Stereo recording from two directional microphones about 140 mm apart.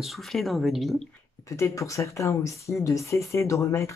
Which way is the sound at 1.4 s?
20° left (ahead or behind).